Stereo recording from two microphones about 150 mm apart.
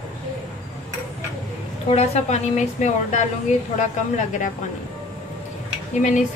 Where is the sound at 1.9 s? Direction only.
45° left (ahead or behind).